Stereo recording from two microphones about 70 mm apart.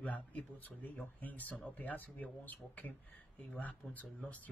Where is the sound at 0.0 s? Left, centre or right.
Left.